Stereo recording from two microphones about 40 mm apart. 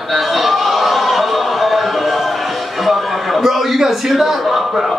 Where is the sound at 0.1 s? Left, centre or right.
Centre.